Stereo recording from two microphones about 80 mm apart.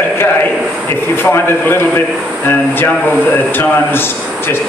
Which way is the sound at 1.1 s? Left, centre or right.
Left.